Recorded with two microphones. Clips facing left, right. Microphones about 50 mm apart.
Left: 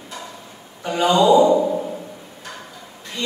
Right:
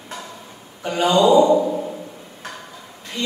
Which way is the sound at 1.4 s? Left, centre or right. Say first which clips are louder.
Even; centre.